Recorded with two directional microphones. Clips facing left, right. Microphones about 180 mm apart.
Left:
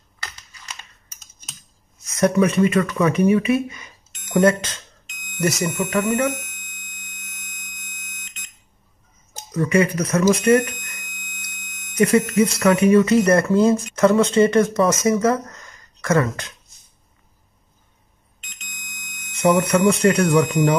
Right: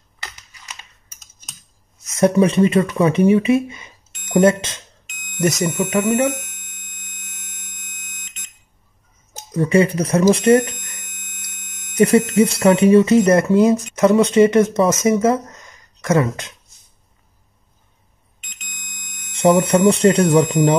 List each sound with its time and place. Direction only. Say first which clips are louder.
2.0 s speech: right 3 dB; 25° right (ahead or behind)
9.5 s speech: right 3 dB; 30° right (ahead or behind)
15.3 s a sound: right 2 dB; 20° right (ahead or behind)
19.3 s speech: right 3 dB; 30° right (ahead or behind)